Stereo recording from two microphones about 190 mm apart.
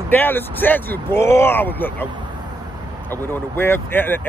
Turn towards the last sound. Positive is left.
turn(degrees=10)  # may be behind; listen again after turning